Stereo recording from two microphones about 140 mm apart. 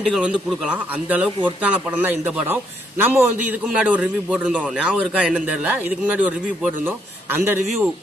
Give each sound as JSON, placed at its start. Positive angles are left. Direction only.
{"t": 0.1, "sound": "speech", "side_deg": -5}